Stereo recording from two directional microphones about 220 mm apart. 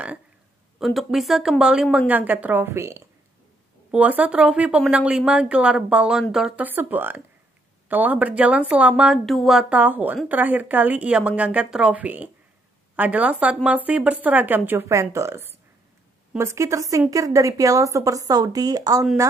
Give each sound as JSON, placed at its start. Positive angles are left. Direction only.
{"t": 0.7, "sound": "speech", "side_deg": 0}